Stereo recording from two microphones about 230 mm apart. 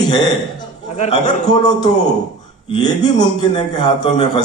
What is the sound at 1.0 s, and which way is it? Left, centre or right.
Speech, left.